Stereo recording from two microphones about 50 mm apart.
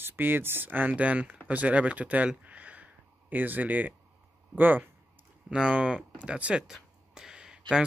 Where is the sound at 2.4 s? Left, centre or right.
Right.